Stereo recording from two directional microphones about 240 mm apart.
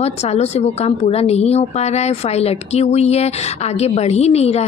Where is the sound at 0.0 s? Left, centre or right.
Left.